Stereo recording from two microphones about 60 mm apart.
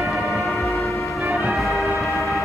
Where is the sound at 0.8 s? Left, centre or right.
Left.